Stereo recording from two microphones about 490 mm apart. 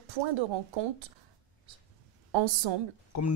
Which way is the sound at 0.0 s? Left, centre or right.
Right.